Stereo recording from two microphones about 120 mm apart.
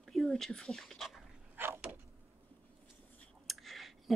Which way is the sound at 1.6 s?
20° right (ahead or behind).